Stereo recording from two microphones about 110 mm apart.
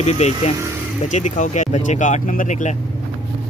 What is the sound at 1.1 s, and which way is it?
Speech, 90° left.